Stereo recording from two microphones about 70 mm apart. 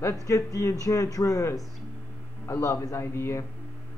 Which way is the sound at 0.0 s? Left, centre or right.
Left.